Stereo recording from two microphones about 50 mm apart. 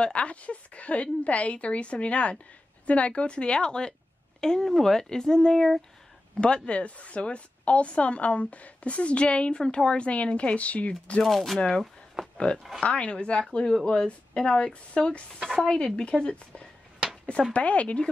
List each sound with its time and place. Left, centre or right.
0.0 s a woman's voice: left
6.3 s a woman's voice: centre
11.2 s speech: centre
12.4 s a woman's voice: centre